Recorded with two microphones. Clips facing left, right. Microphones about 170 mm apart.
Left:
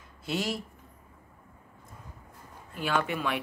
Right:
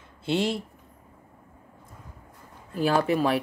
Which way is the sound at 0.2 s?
25° right (ahead or behind).